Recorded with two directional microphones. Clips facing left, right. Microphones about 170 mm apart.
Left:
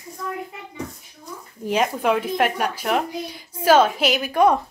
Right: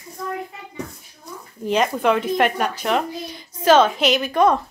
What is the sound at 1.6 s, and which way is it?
A woman's voice, 10° left (ahead or behind).